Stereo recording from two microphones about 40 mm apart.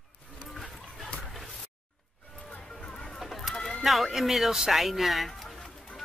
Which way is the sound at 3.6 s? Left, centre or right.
Centre.